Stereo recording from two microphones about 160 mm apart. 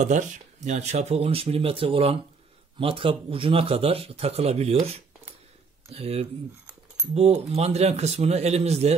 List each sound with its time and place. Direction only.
0.7 s speech: 45° right (ahead or behind)
5.9 s speech: 40° right (ahead or behind)